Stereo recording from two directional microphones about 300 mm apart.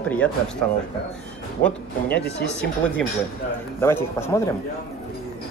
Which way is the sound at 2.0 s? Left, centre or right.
Left.